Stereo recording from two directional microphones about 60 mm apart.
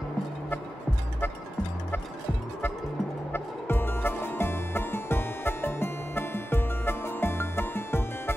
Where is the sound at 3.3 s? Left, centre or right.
Left.